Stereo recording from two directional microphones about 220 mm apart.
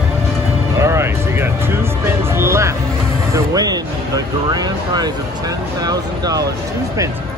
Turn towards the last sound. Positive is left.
turn(degrees=-15)  # may be behind; listen again after turning